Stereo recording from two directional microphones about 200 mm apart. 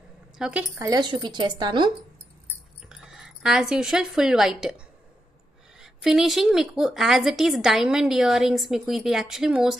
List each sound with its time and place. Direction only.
0.4 s speech: 5° right (ahead or behind); by 1.9 s 25° right (ahead or behind)
2.9 s a woman's voice: 5° right (ahead or behind)